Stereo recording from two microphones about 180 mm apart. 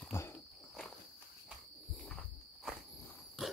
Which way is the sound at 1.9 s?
5° left (ahead or behind).